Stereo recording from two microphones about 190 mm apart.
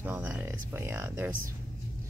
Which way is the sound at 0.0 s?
10° right (ahead or behind).